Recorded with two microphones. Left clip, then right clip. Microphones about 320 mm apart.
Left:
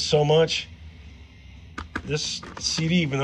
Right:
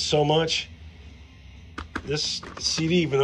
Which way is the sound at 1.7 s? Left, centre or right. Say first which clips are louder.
Even; centre.